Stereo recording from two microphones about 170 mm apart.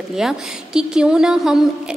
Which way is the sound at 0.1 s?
Centre (ahead or behind).